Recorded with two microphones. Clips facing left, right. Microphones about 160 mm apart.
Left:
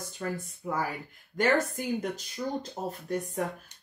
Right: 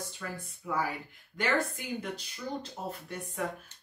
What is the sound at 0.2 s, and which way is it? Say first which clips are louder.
Speech: left 7 dB; 45° left (ahead or behind).